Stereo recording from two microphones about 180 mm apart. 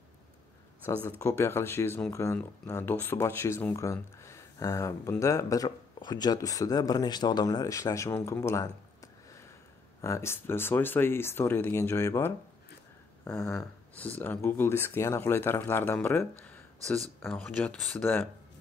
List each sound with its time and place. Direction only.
1.0 s speech: 15° left (ahead or behind)
10.0 s speech: 15° left (ahead or behind)
13.2 s speech: 5° left (ahead or behind)